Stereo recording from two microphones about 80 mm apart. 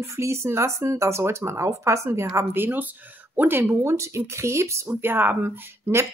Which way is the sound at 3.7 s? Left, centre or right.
Right.